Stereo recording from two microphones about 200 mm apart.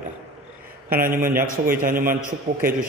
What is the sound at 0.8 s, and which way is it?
A man's voice, 45° right (ahead or behind).